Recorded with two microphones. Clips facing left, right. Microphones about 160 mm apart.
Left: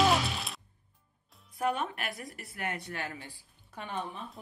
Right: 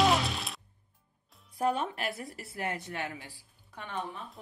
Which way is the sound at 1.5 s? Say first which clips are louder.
Right 2 dB; 30° right (ahead or behind).